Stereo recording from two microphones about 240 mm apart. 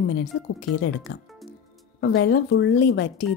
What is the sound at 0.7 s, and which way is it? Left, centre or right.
Speech, left.